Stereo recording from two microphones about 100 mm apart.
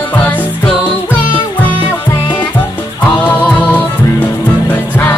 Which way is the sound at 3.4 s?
20° left (ahead or behind).